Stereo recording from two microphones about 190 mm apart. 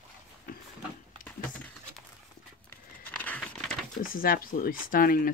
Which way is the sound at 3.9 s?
50° left (ahead or behind).